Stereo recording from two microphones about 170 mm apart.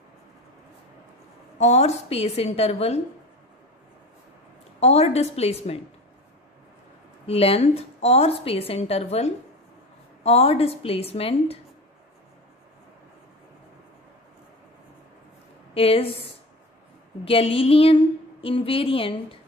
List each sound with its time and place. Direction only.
1.6 s a woman's voice: 40° left (ahead or behind)
4.7 s a woman's voice: 40° left (ahead or behind)
7.2 s a woman's voice: 35° left (ahead or behind)
15.7 s a woman's voice: 35° left (ahead or behind)
17.2 s a woman's voice: 35° left (ahead or behind)